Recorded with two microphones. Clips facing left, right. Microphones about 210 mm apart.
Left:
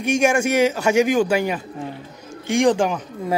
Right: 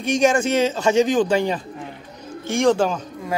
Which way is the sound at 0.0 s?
10° left (ahead or behind).